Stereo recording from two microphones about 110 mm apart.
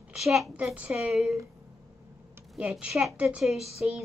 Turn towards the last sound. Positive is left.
turn(degrees=0)  # may be behind; listen again after turning